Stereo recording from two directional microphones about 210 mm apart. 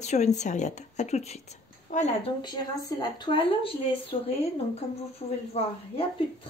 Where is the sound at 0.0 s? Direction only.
35° left (ahead or behind).